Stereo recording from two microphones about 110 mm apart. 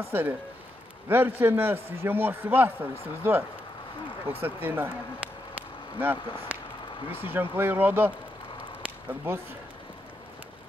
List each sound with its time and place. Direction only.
0.1 s a man's voice: 15° right (ahead or behind)
5.9 s a man's voice: 20° right (ahead or behind)
9.3 s a man's voice: 20° right (ahead or behind)